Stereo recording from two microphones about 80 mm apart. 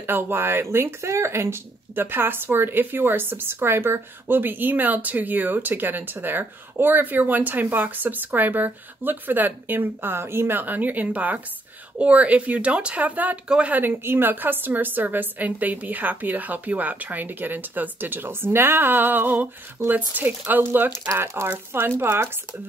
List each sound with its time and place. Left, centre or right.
0.0 s speech: right
21.1 s speech: right